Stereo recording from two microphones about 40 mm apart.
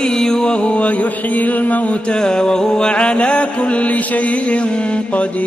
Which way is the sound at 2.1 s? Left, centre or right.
Centre.